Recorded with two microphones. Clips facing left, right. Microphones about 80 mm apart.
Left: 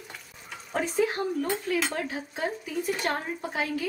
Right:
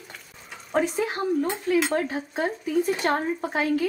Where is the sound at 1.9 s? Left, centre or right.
Right.